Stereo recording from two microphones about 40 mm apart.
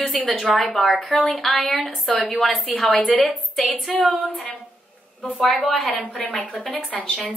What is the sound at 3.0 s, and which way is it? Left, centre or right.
Speech, left.